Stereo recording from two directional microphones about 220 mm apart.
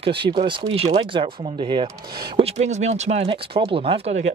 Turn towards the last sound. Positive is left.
turn(degrees=-30)  # may be behind; listen again after turning